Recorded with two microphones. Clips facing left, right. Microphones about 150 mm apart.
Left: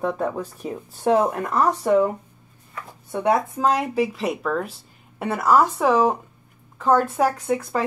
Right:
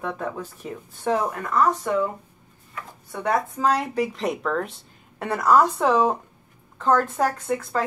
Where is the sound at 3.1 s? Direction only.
15° left (ahead or behind).